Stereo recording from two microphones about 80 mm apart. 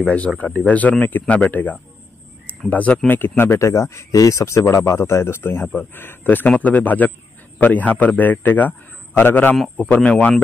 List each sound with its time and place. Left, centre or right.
0.4 s a man's voice: centre